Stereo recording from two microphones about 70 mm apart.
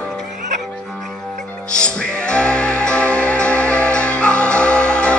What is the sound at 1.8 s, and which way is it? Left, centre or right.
Music, centre.